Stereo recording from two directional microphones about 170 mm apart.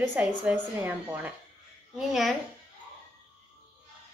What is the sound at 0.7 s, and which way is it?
A woman's voice, 10° right (ahead or behind).